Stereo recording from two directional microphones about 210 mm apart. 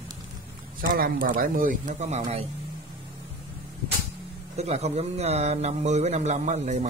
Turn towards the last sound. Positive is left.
turn(degrees=-35)  # may be behind; listen again after turning